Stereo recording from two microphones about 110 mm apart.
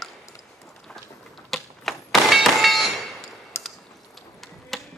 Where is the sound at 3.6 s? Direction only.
25° left (ahead or behind).